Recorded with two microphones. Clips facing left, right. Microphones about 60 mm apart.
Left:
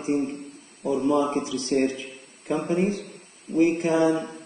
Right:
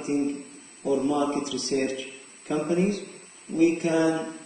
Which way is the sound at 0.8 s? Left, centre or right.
Left.